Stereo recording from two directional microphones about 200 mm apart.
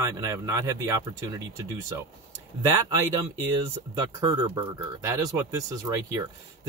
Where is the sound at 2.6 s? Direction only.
15° right (ahead or behind).